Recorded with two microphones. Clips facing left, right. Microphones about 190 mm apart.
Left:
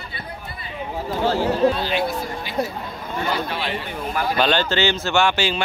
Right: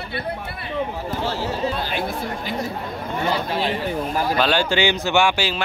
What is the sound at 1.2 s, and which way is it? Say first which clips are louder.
Speech: left 8 dB; 55° left (ahead or behind).